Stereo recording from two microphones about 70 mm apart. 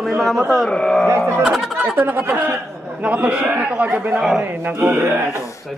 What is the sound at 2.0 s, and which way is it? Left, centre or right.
Speech, right.